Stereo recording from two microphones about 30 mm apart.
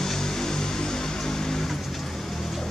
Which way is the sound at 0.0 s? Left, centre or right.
Centre.